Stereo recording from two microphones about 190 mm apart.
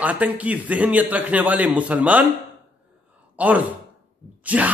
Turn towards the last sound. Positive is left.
turn(degrees=-10)  # may be behind; listen again after turning